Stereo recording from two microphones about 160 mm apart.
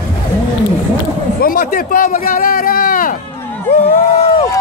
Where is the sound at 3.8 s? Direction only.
40° left (ahead or behind).